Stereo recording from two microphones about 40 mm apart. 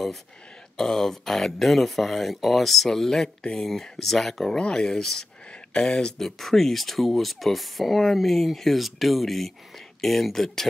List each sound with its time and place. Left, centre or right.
0.7 s speech: centre
4.6 s speech: left
4.8 s speech: centre
6.2 s speech: centre